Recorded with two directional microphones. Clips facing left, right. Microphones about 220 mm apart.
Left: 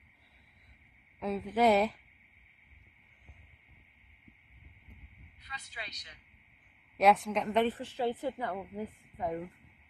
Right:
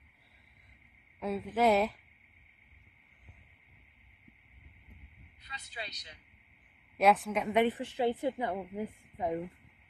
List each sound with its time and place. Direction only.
1.2 s a woman's voice: 5° right (ahead or behind)
5.4 s vehicle: 30° right (ahead or behind)
7.0 s a woman's voice: centre (ahead or behind)